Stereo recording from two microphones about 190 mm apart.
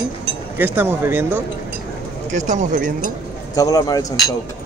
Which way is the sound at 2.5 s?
40° right (ahead or behind).